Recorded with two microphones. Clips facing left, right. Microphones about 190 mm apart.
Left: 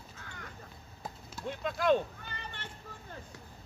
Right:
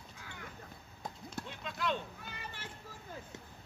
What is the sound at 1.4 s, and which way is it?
Speech, 50° left (ahead or behind).